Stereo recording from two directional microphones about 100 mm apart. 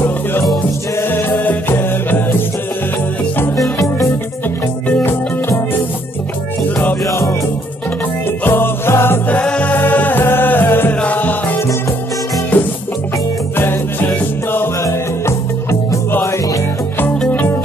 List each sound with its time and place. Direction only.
1.4 s music: 20° left (ahead or behind)
3.5 s music: centre (ahead or behind)
4.8 s music: 15° left (ahead or behind)
7.1 s music: 30° left (ahead or behind)
8.5 s music: 25° left (ahead or behind)
9.4 s music: 10° left (ahead or behind)